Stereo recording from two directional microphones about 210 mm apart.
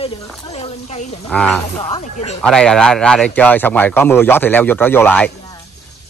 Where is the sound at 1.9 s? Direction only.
30° left (ahead or behind).